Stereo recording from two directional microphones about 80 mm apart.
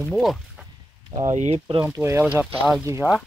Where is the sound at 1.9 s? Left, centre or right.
Right.